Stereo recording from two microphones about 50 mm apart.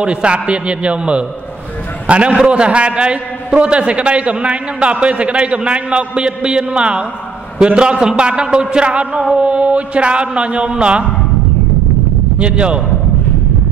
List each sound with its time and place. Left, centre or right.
0.0 s a man's voice: right
12.4 s a man's voice: right